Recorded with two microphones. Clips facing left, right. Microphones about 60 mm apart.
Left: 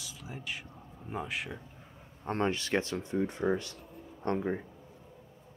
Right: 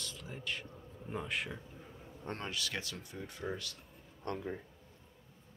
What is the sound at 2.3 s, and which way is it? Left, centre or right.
Speech, left.